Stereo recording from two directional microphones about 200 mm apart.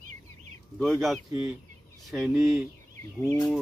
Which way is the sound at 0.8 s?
Centre (ahead or behind).